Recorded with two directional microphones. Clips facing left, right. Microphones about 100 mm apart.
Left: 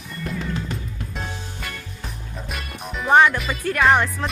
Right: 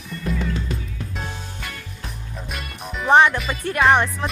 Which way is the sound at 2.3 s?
Centre (ahead or behind).